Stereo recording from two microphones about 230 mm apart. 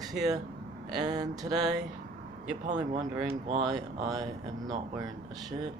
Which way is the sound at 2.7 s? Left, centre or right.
Right.